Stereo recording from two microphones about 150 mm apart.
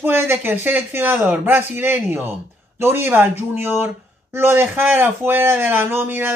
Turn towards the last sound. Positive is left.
turn(degrees=-15)  # may be behind; listen again after turning